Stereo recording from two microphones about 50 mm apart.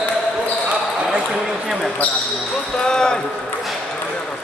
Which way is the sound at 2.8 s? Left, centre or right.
Centre.